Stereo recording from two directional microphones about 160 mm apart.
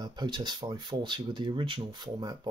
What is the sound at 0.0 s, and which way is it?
Speech, 30° right (ahead or behind).